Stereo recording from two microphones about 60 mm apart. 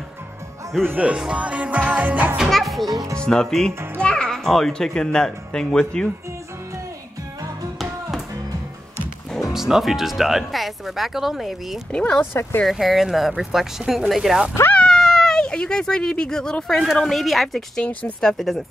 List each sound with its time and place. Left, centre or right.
0.8 s music: right
2.5 s speech: centre
2.9 s speech: right
3.2 s a child's voice: centre
9.5 s speech: centre
11.9 s a child's voice: centre
12.6 s speech: centre
14.9 s speech: centre